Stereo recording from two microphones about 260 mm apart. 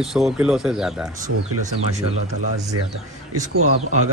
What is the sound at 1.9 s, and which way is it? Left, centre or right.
Speech, right.